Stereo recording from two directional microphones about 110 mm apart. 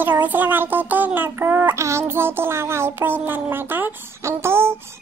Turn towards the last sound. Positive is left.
turn(degrees=-20)  # may be behind; listen again after turning